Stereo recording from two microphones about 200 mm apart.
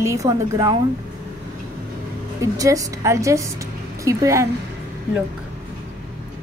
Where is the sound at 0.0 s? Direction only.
15° right (ahead or behind).